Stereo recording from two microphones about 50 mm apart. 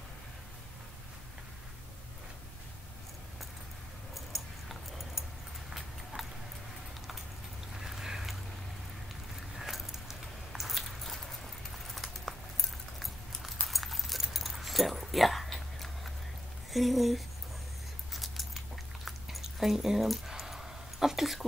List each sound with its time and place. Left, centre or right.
4.1 s dog: centre
6.1 s a sound: right
7.7 s a sound: centre
9.6 s keys jangling: centre
11.8 s clip-clop: centre
13.0 s keys jangling: centre
16.7 s speech: centre
18.1 s keys jangling: centre
19.4 s a sound: centre